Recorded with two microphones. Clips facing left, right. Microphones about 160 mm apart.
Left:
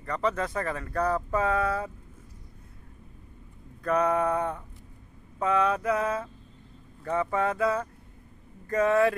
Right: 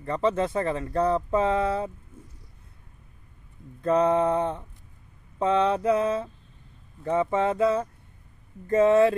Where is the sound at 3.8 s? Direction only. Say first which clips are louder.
Right 4 dB; 25° right (ahead or behind).